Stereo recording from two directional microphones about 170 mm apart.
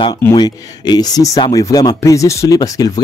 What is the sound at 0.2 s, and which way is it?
Speech, 25° left (ahead or behind).